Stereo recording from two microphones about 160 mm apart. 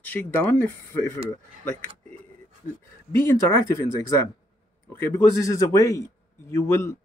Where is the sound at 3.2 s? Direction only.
15° left (ahead or behind).